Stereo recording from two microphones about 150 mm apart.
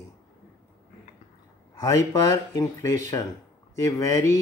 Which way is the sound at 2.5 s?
20° left (ahead or behind).